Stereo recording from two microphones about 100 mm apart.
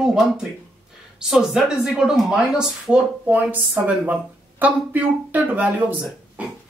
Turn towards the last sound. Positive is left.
turn(degrees=-15)  # may be behind; listen again after turning